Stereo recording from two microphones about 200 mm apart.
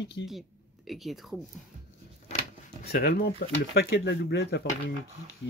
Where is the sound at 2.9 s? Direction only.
50° left (ahead or behind).